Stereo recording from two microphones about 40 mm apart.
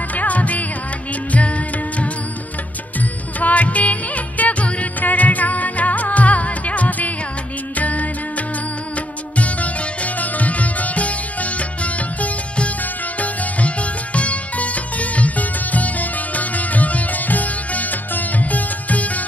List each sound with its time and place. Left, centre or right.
0.1 s music: left